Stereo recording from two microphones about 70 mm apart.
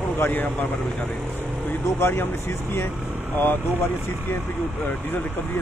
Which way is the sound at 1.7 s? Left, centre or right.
Left.